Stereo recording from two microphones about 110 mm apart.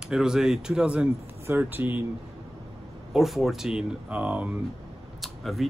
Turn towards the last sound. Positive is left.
turn(degrees=0)  # may be behind; listen again after turning